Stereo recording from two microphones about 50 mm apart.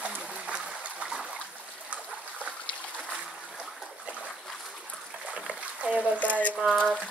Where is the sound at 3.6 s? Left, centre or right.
Right.